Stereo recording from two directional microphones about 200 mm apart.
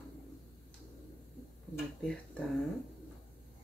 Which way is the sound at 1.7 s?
5° left (ahead or behind).